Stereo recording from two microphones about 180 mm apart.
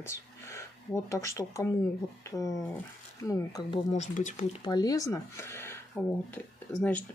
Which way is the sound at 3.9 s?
40° left (ahead or behind).